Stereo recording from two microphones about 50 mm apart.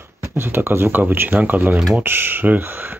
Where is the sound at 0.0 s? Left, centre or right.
Right.